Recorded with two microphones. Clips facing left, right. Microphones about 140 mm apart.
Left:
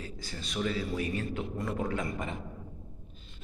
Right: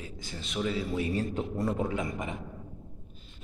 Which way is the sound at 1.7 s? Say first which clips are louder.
Right 1 dB; 20° right (ahead or behind).